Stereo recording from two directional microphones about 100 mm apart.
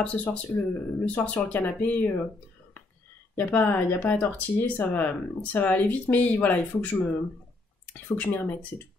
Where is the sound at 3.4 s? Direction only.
20° left (ahead or behind).